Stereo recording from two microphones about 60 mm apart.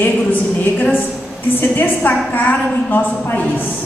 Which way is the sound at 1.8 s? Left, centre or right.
Left.